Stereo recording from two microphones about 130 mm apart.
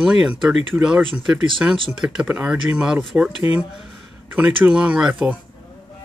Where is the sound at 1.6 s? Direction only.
15° right (ahead or behind).